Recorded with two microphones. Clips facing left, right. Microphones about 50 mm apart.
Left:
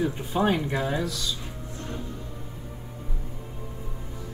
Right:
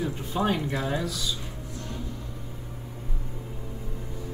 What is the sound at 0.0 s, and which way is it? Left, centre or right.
Speech, centre.